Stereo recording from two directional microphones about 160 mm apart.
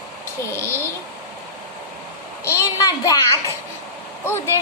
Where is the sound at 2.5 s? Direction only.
20° left (ahead or behind).